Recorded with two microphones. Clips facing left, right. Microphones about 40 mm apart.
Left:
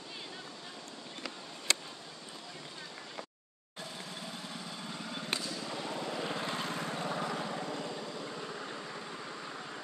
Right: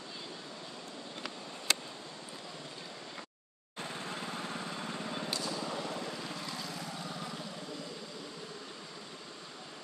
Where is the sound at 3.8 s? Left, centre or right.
Right.